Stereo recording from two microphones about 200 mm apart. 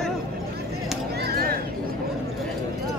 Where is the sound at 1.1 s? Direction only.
50° right (ahead or behind).